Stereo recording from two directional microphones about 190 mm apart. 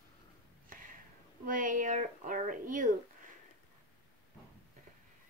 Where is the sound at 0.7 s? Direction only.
45° right (ahead or behind).